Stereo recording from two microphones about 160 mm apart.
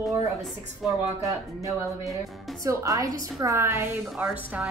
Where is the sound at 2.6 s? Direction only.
20° right (ahead or behind).